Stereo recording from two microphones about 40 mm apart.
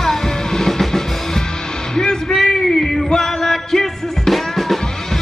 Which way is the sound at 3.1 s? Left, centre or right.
Centre.